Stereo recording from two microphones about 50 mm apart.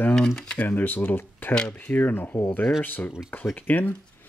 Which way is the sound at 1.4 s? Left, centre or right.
Left.